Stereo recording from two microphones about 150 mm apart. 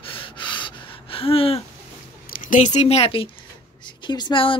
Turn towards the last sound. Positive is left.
turn(degrees=30)  # may be behind; listen again after turning